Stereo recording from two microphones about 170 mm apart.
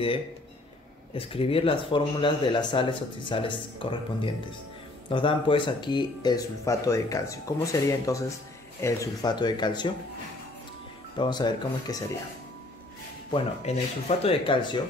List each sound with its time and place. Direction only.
1.1 s speech: 35° left (ahead or behind)
11.1 s speech: 25° left (ahead or behind)
13.3 s speech: 35° left (ahead or behind)